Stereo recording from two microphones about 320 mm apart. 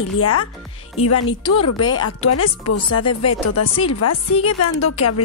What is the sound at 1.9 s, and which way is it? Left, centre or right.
Speech, left.